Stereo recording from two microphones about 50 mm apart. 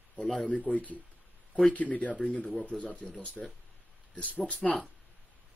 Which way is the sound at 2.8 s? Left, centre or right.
Left.